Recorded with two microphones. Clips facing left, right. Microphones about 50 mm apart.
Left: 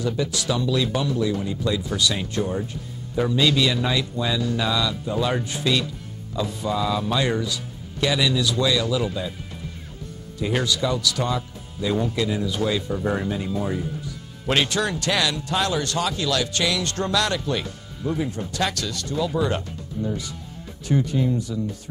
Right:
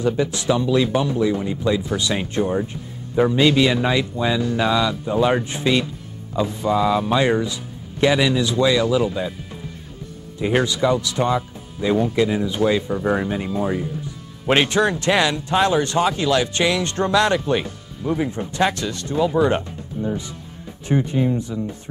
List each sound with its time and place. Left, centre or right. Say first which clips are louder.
0.0 s speech: right 4 dB; right
10.4 s speech: right 5 dB; right